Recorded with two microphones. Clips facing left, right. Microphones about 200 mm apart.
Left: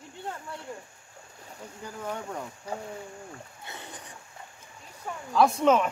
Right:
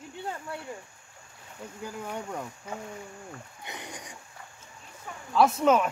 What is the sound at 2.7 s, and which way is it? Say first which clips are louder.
Speech: left 5 dB; 35° left (ahead or behind).